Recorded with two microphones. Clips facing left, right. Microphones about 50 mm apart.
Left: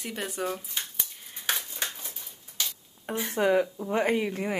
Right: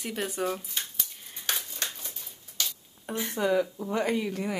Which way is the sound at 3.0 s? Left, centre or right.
Left.